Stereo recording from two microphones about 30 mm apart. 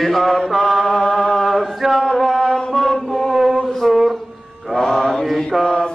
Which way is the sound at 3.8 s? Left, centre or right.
Centre.